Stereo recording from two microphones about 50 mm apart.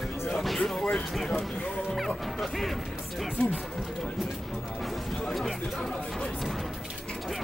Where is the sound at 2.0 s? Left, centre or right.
Centre.